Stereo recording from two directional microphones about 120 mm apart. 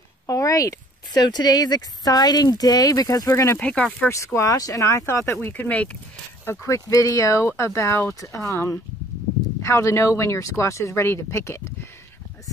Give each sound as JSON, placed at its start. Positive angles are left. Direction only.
{"t": 0.3, "sound": "speech", "side_deg": 30}
{"t": 3.5, "sound": "speech", "side_deg": 10}
{"t": 4.1, "sound": "speech", "side_deg": 25}
{"t": 6.4, "sound": "speech", "side_deg": 25}